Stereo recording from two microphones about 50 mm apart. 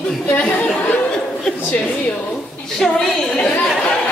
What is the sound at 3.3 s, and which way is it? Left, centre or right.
Speech, left.